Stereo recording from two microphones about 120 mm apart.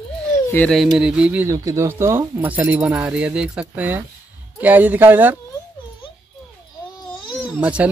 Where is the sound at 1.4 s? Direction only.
25° right (ahead or behind).